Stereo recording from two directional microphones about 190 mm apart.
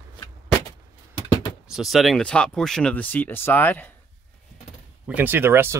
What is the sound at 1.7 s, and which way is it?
Speech, centre (ahead or behind).